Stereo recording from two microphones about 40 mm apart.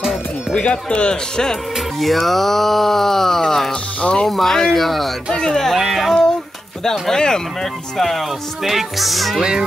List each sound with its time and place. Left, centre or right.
0.7 s speech: left
1.3 s speech: centre
2.0 s speech: centre
4.0 s speech: left
4.3 s speech: centre
5.3 s speech: centre
5.8 s speech: centre
6.8 s speech: centre
8.0 s speech: centre
9.4 s speech: centre